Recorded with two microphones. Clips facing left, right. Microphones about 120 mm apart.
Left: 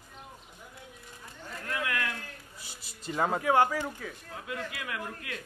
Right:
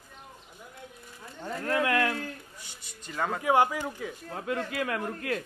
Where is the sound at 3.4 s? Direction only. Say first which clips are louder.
Right 3 dB; 15° right (ahead or behind).